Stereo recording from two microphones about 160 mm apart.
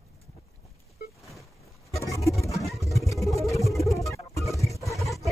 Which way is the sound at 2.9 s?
20° left (ahead or behind).